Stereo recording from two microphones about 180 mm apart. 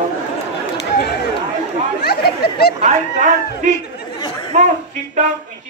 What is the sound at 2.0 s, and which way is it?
Chatter, 60° left (ahead or behind).